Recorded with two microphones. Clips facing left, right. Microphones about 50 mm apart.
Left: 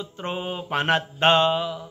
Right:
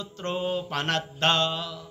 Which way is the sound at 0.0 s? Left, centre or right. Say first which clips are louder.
Even; centre.